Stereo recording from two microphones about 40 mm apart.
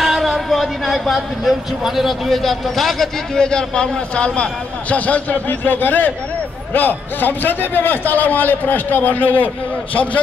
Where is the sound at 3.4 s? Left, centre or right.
Centre.